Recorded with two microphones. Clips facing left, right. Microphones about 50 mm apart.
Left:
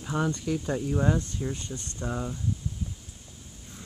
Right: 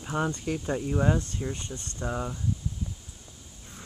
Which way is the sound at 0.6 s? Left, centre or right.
Centre.